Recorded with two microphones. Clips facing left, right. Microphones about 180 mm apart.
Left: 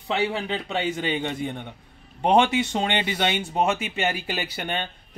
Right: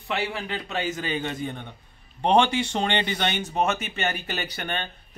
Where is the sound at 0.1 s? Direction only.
25° left (ahead or behind).